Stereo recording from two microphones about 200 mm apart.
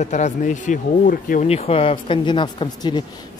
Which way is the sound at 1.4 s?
30° left (ahead or behind).